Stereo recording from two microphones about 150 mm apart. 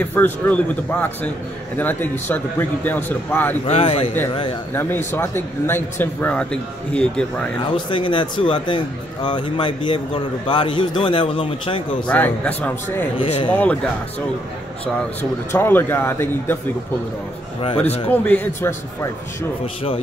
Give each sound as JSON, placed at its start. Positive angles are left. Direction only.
{"t": 0.0, "sound": "speech", "side_deg": 10}
{"t": 1.8, "sound": "speech", "side_deg": 10}
{"t": 3.6, "sound": "speech", "side_deg": 40}
{"t": 4.7, "sound": "speech", "side_deg": 15}
{"t": 7.7, "sound": "speech", "side_deg": 35}
{"t": 12.1, "sound": "speech", "side_deg": 10}
{"t": 13.2, "sound": "speech", "side_deg": 35}
{"t": 15.5, "sound": "speech", "side_deg": 15}
{"t": 17.6, "sound": "speech", "side_deg": 40}
{"t": 18.1, "sound": "speech", "side_deg": 10}
{"t": 19.6, "sound": "speech", "side_deg": 40}